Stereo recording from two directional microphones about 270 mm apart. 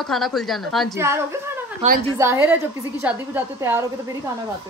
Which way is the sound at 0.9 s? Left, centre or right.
Centre.